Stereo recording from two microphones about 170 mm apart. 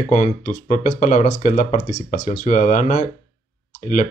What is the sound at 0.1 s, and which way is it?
Speech, 45° left (ahead or behind).